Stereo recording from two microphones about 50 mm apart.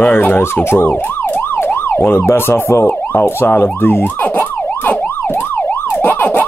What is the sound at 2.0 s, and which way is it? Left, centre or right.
Speech, left.